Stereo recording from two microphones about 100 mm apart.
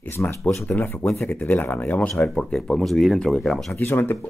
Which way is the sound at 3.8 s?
20° left (ahead or behind).